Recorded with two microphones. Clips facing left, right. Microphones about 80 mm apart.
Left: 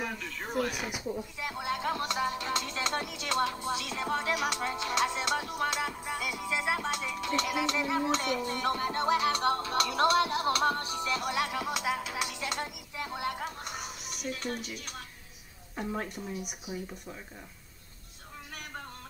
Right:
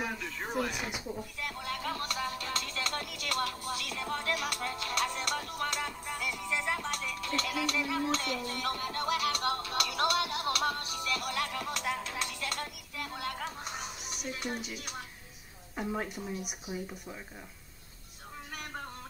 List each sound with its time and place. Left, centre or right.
0.0 s speech: centre
1.4 s music: centre
13.4 s music: centre
14.3 s speech: centre